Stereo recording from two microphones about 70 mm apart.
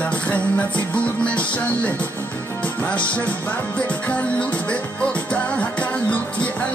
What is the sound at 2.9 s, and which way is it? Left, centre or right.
Music, centre.